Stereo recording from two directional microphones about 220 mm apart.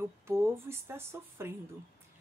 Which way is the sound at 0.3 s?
10° right (ahead or behind).